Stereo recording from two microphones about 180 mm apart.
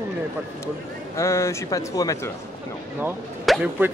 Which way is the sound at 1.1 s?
15° left (ahead or behind).